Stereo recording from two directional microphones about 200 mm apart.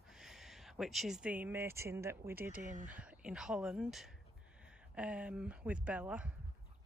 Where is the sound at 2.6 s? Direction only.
40° right (ahead or behind).